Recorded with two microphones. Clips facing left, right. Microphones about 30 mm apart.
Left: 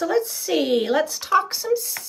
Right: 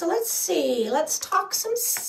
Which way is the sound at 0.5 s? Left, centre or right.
Left.